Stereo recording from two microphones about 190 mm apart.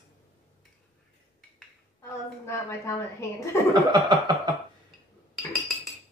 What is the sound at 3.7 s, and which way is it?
Speech, 25° right (ahead or behind).